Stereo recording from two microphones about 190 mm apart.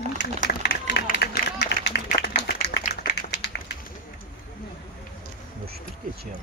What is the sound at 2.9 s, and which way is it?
Clapping, 60° left (ahead or behind).